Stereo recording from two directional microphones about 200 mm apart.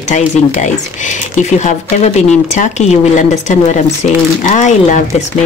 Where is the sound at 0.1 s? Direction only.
40° left (ahead or behind).